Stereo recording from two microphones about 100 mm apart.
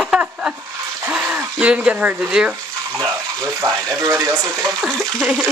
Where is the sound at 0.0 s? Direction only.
10° right (ahead or behind).